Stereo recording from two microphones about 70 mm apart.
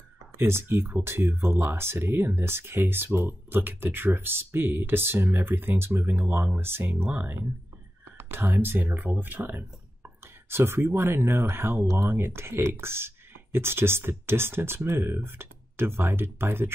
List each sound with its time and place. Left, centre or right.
0.5 s speech: right